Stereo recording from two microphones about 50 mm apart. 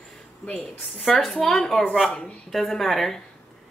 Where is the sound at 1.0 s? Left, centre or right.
Centre.